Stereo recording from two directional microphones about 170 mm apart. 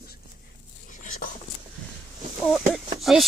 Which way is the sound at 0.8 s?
50° left (ahead or behind).